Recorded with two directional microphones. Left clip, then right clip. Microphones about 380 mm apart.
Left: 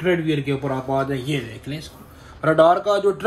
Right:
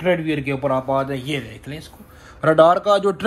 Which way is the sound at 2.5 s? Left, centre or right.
Centre.